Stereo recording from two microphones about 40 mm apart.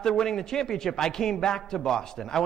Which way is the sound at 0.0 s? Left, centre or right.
Centre.